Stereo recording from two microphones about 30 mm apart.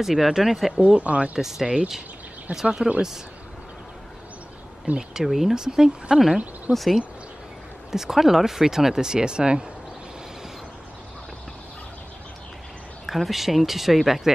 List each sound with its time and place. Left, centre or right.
0.0 s speech: centre
0.7 s speech: right
1.4 s speech: centre
4.9 s speech: right
5.2 s speech: centre
5.6 s speech: right
6.7 s speech: centre
7.9 s speech: centre
9.1 s speech: right
13.0 s speech: centre